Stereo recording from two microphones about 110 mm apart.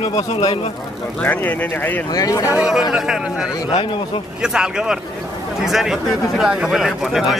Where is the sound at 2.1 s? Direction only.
35° left (ahead or behind).